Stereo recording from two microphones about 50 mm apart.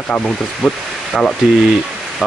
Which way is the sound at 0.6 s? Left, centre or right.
Centre.